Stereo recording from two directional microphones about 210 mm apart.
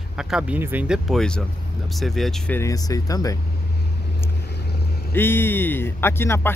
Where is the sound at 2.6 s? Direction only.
15° left (ahead or behind).